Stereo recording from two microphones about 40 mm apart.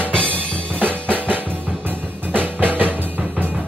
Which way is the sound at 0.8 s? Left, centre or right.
Right.